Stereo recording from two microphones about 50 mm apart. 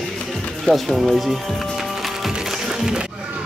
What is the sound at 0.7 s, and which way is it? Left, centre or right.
Speech, centre.